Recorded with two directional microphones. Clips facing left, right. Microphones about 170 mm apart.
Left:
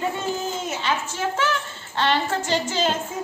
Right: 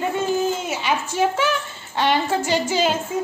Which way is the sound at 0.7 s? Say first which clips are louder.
Right 3 dB; 10° right (ahead or behind).